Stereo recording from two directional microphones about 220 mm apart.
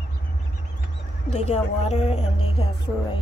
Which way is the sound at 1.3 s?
30° left (ahead or behind).